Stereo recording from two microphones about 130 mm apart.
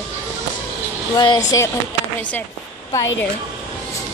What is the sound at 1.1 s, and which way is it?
Speech, 35° left (ahead or behind).